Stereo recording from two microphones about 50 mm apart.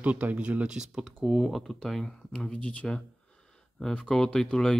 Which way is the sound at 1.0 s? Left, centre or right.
Centre.